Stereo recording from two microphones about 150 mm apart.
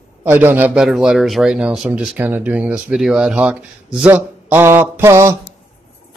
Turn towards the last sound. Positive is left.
turn(degrees=-20)  # may be behind; listen again after turning